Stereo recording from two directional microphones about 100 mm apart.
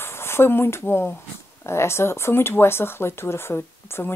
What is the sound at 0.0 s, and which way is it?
Speech, 25° left (ahead or behind).